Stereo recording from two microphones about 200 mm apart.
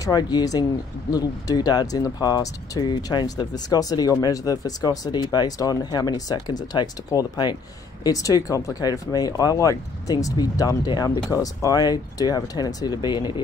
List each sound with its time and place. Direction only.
0.0 s speech: 20° left (ahead or behind)